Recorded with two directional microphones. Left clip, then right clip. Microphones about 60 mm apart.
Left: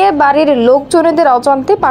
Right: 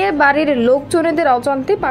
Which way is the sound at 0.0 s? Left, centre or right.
Left.